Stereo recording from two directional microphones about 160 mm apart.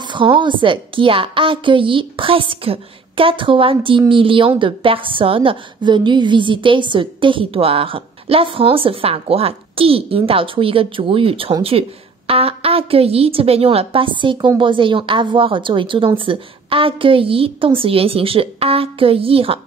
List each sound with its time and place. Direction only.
0.0 s a woman's voice: 30° right (ahead or behind)